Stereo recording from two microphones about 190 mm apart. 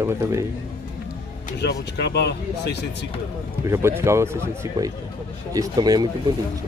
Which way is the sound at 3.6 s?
15° right (ahead or behind).